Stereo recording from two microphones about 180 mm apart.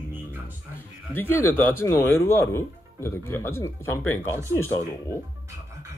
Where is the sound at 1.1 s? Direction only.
10° left (ahead or behind).